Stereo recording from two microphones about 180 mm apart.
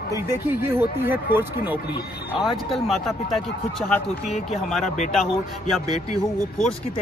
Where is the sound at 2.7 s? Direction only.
Centre (ahead or behind).